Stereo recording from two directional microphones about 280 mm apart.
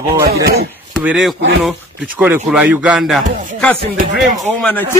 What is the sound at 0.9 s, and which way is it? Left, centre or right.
A man's voice, centre.